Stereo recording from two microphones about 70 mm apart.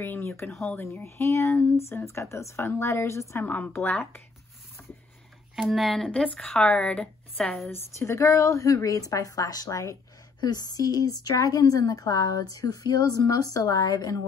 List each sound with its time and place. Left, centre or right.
0.0 s speech: left
3.4 s speech: left
5.6 s speech: centre
6.0 s a woman's voice: centre
7.7 s a woman's voice: left
10.4 s a woman's voice: left